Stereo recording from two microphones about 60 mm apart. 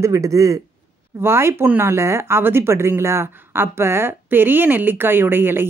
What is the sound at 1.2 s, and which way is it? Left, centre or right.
Speech, right.